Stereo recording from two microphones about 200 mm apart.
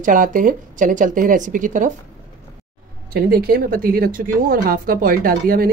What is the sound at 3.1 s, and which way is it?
A woman's voice, 50° right (ahead or behind).